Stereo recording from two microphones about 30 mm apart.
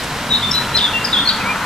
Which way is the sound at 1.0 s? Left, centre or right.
Left.